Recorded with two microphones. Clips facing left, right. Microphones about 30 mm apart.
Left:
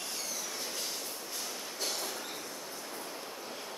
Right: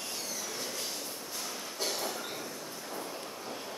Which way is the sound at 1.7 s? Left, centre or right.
Centre.